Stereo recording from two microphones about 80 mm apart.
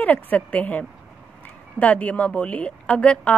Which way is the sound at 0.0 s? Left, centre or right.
Centre.